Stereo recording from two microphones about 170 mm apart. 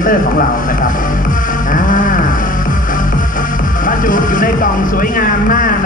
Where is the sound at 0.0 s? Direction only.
50° left (ahead or behind).